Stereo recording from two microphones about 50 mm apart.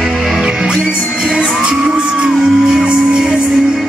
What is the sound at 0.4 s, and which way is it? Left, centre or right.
Music, centre.